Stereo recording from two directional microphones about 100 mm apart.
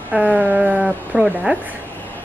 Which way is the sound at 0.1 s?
15° right (ahead or behind).